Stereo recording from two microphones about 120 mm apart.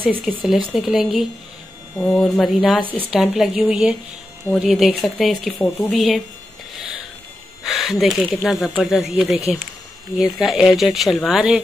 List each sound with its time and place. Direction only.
0.3 s speech: 10° right (ahead or behind)
5.6 s speech: 15° left (ahead or behind)
5.9 s speech: centre (ahead or behind)
7.6 s speech: 5° right (ahead or behind)